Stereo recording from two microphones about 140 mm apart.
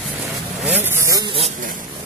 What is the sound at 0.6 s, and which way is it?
Vehicle, 15° right (ahead or behind).